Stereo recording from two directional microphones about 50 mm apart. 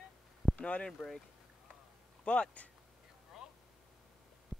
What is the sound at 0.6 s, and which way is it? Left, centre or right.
Speech, left.